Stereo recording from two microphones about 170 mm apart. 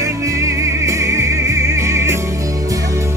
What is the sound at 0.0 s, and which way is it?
Music, 20° right (ahead or behind).